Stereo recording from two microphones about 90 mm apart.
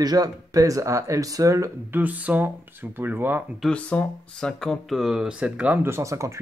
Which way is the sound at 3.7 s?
15° left (ahead or behind).